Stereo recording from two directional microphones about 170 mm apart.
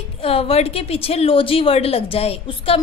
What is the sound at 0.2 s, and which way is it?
A woman's voice, 35° left (ahead or behind).